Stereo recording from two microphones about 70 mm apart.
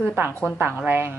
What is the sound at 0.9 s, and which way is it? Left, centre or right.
Speech, right.